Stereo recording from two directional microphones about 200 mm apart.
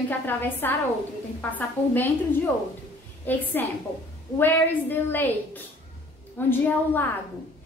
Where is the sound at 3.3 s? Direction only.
10° left (ahead or behind).